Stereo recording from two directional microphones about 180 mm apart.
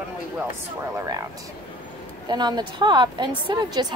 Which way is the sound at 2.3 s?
25° right (ahead or behind).